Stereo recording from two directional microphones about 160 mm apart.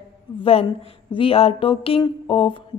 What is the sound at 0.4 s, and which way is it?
Speech, 35° left (ahead or behind).